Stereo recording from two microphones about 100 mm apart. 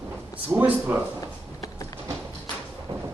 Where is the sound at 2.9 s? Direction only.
35° right (ahead or behind).